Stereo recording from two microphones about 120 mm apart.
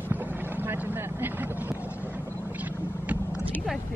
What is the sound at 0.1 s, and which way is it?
Vehicle, 15° right (ahead or behind).